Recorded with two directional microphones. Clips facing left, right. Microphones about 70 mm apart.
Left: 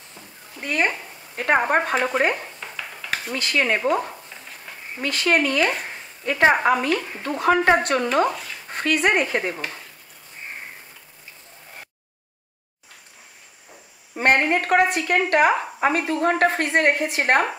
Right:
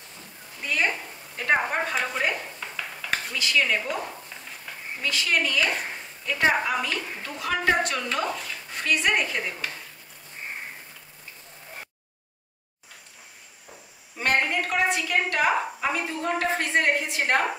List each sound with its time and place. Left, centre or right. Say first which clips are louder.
0.6 s speech: left 3 dB; left
2.7 s a sound: even; centre
3.3 s a woman's voice: left 3 dB; left
5.0 s a woman's voice: left 5 dB; left
14.1 s a sound: left 6 dB; left
14.4 s a woman's voice: left 6 dB; left